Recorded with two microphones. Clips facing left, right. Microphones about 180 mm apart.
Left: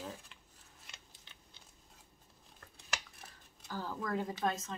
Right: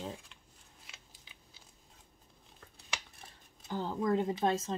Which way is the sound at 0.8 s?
5° right (ahead or behind).